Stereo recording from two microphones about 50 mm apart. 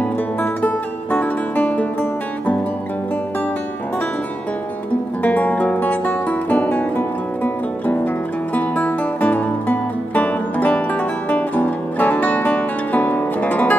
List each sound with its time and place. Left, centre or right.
0.0 s music: left
5.2 s music: left